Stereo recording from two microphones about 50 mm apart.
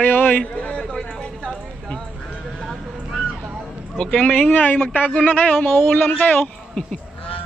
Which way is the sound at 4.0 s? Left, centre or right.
Centre.